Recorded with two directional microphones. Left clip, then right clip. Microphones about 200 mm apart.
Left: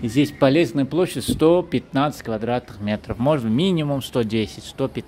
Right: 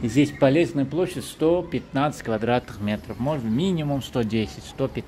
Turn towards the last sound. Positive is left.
turn(degrees=20)  # may be behind; listen again after turning